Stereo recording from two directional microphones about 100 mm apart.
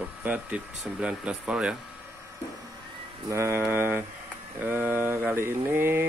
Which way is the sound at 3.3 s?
25° right (ahead or behind).